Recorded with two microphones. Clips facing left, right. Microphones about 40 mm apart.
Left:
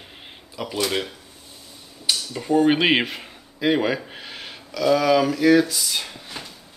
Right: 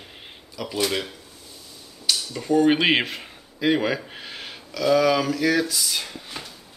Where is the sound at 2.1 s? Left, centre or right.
Centre.